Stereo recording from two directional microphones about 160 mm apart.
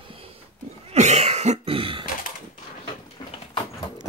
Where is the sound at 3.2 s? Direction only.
25° left (ahead or behind).